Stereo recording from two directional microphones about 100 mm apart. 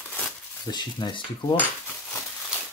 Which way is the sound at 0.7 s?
45° left (ahead or behind).